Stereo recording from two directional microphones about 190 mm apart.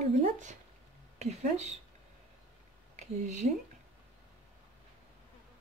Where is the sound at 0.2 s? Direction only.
40° right (ahead or behind).